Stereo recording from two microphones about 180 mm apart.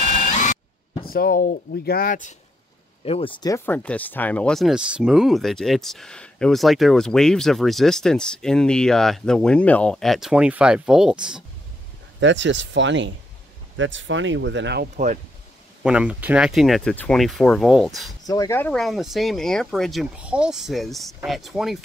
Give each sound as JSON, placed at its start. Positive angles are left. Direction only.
{"t": 0.0, "sound": "a sound", "side_deg": 45}
{"t": 1.0, "sound": "speech", "side_deg": 55}
{"t": 3.1, "sound": "speech", "side_deg": 30}
{"t": 12.2, "sound": "speech", "side_deg": -90}
{"t": 15.8, "sound": "speech", "side_deg": -5}
{"t": 18.2, "sound": "speech", "side_deg": 20}